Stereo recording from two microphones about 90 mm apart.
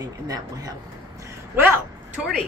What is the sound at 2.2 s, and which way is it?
Speech, 5° right (ahead or behind).